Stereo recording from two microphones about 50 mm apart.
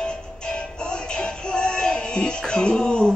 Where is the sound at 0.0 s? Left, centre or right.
Centre.